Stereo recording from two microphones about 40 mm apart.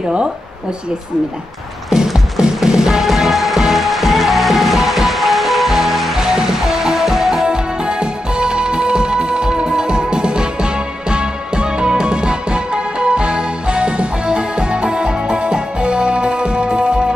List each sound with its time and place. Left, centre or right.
1.9 s music: centre
7.4 s music: right